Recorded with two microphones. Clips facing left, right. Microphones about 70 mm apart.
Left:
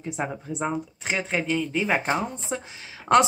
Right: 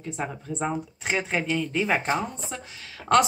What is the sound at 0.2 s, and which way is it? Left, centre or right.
Speech, centre.